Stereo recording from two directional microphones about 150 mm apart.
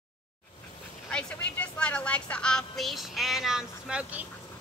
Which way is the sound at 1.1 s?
10° left (ahead or behind).